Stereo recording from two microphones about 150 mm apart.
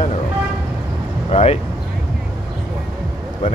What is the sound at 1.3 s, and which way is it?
Speech, 45° left (ahead or behind).